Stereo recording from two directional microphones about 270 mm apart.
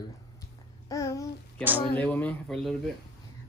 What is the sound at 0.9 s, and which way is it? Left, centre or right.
Babbling, centre.